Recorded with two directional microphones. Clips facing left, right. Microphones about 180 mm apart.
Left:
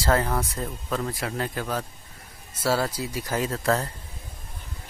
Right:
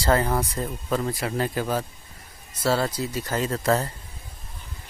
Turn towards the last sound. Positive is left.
turn(degrees=-5)  # may be behind; listen again after turning